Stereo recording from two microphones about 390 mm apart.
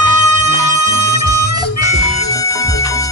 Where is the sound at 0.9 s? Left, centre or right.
Left.